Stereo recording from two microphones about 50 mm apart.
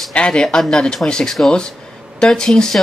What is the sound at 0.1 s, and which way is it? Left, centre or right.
Speech, centre.